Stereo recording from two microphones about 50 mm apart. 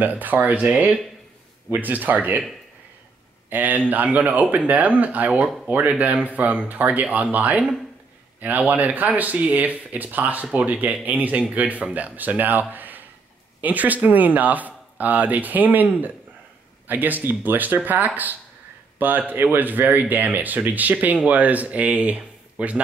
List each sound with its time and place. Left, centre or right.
0.0 s speech: right
3.4 s a man's voice: right